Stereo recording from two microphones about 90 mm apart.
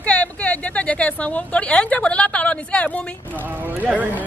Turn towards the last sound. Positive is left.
turn(degrees=-20)  # may be behind; listen again after turning